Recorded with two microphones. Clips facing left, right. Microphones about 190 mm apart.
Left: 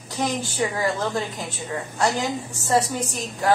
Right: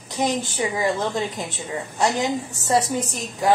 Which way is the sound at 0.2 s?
20° right (ahead or behind).